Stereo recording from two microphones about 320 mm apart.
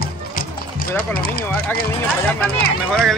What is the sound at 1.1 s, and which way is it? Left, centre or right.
Speech, left.